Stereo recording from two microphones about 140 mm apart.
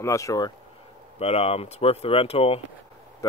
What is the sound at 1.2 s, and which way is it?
Speech, 45° left (ahead or behind).